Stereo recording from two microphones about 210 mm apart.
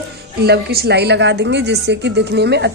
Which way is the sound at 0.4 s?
50° right (ahead or behind).